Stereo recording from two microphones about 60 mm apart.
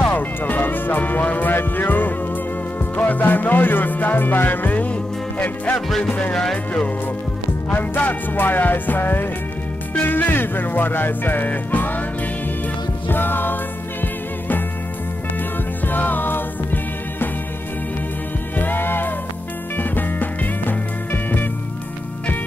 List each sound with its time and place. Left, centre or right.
0.1 s music: left
5.9 s music: centre
7.7 s music: left
13.1 s music: left
15.9 s music: left
18.6 s music: left